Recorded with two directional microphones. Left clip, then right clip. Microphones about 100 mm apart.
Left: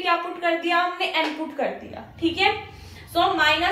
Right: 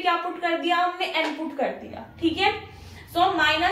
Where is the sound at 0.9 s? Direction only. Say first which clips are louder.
Left 2 dB; 40° left (ahead or behind).